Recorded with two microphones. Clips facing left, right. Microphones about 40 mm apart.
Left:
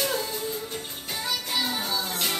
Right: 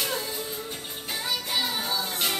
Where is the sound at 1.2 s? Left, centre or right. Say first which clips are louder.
Even; centre.